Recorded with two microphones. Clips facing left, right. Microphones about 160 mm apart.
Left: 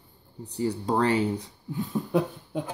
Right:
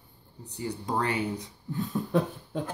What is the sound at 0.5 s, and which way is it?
Speech, 30° left (ahead or behind).